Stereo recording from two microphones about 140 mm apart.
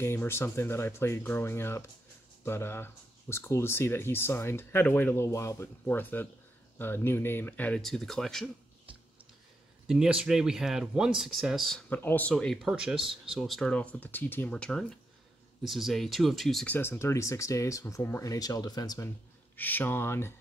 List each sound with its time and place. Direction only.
0.0 s speech: 15° left (ahead or behind)
9.8 s speech: 5° right (ahead or behind)
11.9 s speech: 15° left (ahead or behind)
16.7 s speech: 15° left (ahead or behind)
19.5 s speech: 15° left (ahead or behind)